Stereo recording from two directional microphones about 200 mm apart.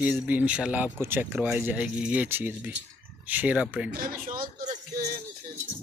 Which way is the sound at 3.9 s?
45° right (ahead or behind).